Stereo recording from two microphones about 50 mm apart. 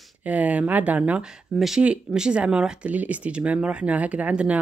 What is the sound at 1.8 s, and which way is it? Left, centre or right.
Speech, centre.